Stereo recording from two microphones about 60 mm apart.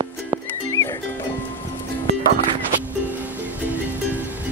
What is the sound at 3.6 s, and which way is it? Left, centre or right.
Music, right.